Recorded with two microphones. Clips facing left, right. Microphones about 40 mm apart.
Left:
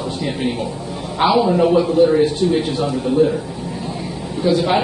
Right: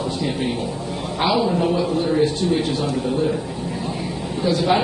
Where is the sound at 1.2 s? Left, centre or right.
Centre.